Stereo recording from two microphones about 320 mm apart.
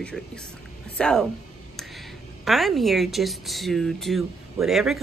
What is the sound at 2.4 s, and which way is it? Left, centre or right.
A woman's voice, centre.